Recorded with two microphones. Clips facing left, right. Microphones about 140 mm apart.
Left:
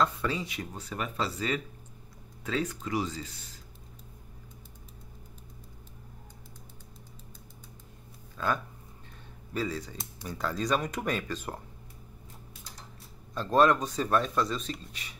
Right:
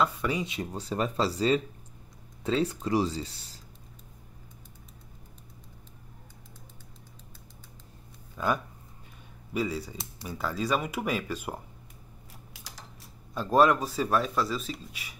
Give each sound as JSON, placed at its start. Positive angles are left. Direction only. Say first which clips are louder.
{"t": 0.0, "sound": "speech", "louder": "right 1 dB", "side_deg": -15}
{"t": 8.4, "sound": "speech", "louder": "right 2 dB", "side_deg": -15}
{"t": 12.5, "sound": "a sound", "louder": "right 3 dB", "side_deg": -80}
{"t": 13.3, "sound": "a man's voice", "louder": "right 1 dB", "side_deg": -10}